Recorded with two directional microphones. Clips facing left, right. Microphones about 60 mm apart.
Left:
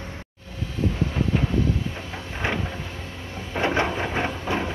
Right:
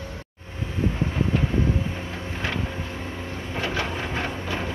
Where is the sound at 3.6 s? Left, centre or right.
Left.